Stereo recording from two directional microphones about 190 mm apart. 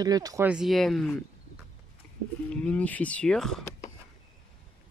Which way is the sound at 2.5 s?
5° left (ahead or behind).